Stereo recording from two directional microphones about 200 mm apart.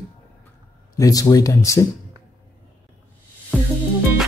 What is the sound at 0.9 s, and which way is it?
Speech, 15° left (ahead or behind).